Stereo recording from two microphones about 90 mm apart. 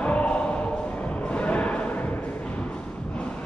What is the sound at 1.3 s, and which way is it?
Music, 15° left (ahead or behind).